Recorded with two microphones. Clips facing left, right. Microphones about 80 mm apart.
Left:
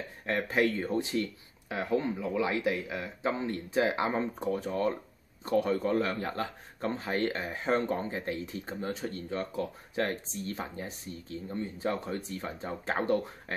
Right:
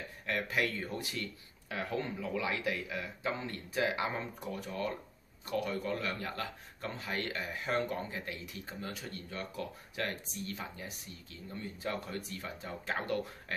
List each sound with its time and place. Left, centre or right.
0.3 s a man's voice: left